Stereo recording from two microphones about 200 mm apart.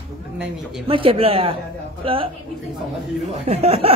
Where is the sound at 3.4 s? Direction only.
30° right (ahead or behind).